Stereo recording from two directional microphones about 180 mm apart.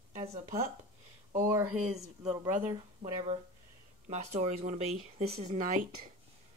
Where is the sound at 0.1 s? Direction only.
35° right (ahead or behind).